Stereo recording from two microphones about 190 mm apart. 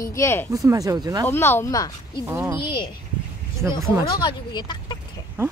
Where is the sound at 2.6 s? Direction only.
25° left (ahead or behind).